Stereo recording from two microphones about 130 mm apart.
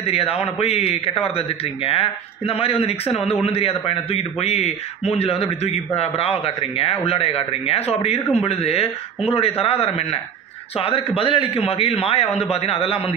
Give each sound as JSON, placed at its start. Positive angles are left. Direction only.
{"t": 0.0, "sound": "a man's voice", "side_deg": 50}